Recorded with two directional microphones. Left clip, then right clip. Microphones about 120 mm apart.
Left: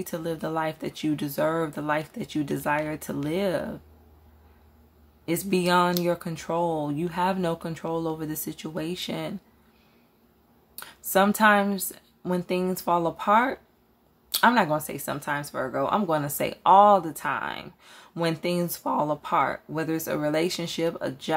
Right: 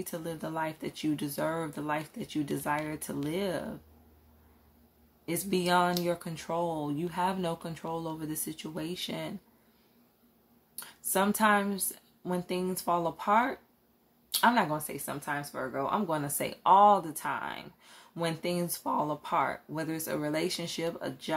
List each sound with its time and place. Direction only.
0.0 s speech: 35° left (ahead or behind)
5.2 s speech: 35° left (ahead or behind)
10.8 s speech: 35° left (ahead or behind)